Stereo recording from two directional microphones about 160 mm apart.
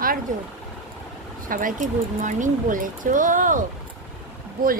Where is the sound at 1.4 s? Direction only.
60° right (ahead or behind).